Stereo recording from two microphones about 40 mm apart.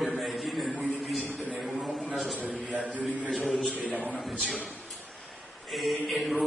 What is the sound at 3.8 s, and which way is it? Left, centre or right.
Speech, left.